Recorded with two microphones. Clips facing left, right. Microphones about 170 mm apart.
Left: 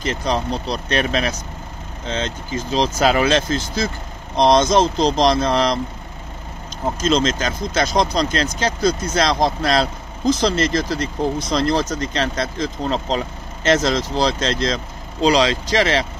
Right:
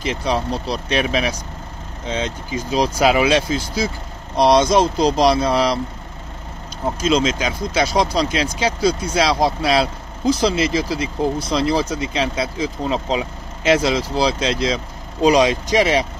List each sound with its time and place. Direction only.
0.0 s speech: 5° right (ahead or behind)
7.0 s speech: 10° right (ahead or behind)
15.2 s speech: 20° right (ahead or behind)